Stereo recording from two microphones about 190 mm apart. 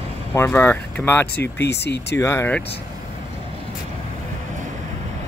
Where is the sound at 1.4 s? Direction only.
60° left (ahead or behind).